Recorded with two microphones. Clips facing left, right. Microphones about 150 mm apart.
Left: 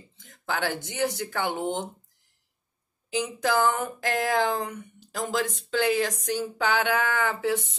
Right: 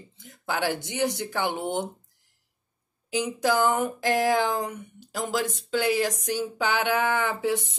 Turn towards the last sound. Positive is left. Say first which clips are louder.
# right 1 dB
turn(degrees=-20)  # may be behind; listen again after turning